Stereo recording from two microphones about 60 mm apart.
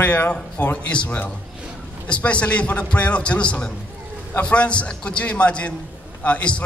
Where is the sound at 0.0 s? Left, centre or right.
Left.